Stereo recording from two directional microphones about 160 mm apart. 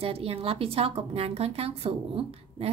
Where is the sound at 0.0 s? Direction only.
40° right (ahead or behind).